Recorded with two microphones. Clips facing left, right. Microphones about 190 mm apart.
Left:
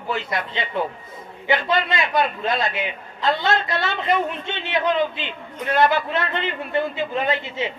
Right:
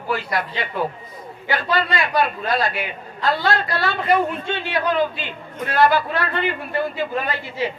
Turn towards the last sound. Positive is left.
turn(degrees=20)  # may be behind; listen again after turning